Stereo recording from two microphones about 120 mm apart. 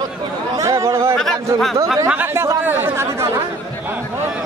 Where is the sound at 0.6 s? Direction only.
25° right (ahead or behind).